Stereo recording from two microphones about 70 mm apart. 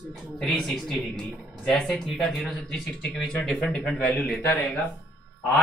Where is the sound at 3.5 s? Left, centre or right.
Centre.